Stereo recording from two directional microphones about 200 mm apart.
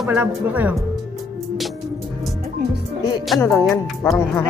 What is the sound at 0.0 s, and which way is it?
Speech, 10° right (ahead or behind).